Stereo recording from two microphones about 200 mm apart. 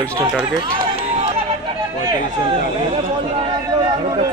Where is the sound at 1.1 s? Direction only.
30° right (ahead or behind).